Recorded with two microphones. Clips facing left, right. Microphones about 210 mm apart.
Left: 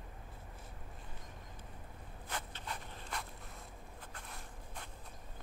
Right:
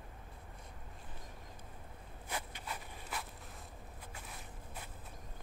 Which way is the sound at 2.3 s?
10° right (ahead or behind).